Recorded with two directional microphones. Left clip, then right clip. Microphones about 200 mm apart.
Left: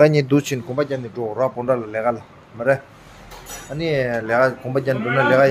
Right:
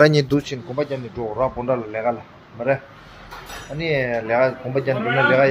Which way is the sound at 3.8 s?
20° left (ahead or behind).